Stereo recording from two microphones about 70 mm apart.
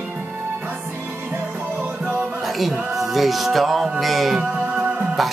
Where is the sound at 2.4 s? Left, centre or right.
Centre.